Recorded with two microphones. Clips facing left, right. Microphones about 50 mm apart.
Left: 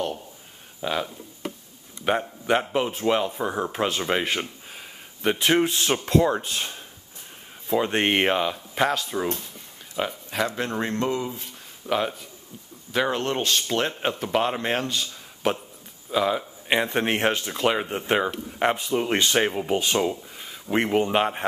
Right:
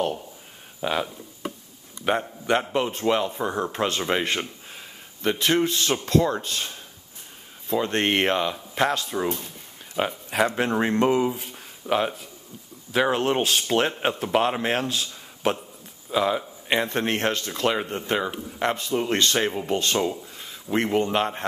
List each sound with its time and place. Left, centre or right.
0.7 s a sound: centre
2.0 s speech: centre
9.9 s speech: centre
11.8 s speech: centre
18.0 s speech: left